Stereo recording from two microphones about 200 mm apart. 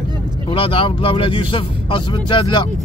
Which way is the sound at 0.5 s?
25° left (ahead or behind).